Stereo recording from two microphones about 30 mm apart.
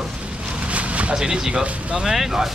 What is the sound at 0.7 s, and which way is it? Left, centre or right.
Vehicle, right.